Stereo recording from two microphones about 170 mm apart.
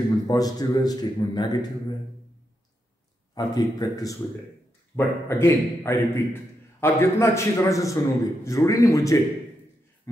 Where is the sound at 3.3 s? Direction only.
20° left (ahead or behind).